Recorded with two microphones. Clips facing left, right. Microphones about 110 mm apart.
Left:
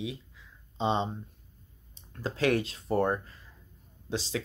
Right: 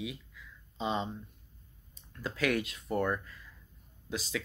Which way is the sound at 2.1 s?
30° left (ahead or behind).